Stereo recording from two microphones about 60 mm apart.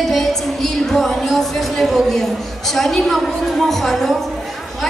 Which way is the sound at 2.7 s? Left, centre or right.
Centre.